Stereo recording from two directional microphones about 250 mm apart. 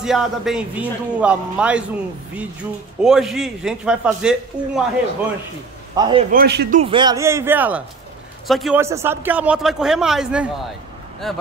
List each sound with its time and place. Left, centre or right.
0.0 s a man's voice: centre
3.0 s a man's voice: centre
5.9 s speech: centre
6.3 s speech: right
6.8 s a man's voice: centre